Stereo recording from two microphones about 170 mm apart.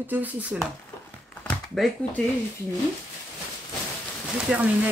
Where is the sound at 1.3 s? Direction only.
10° left (ahead or behind).